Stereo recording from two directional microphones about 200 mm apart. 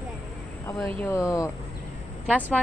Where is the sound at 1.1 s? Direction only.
15° left (ahead or behind).